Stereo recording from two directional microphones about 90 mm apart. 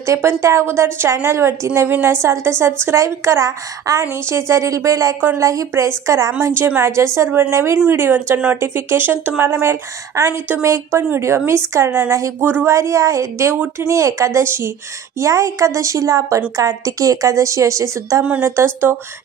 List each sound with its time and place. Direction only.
0.0 s a woman's voice: 30° right (ahead or behind)
12.4 s a woman's voice: 25° right (ahead or behind)
12.7 s a woman's voice: 35° right (ahead or behind)